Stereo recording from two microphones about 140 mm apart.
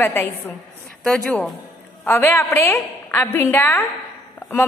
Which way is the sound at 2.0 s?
15° left (ahead or behind).